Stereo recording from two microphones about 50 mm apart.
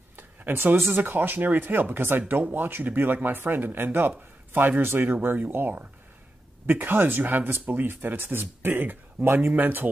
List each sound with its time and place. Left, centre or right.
0.1 s speech: right
7.9 s speech: right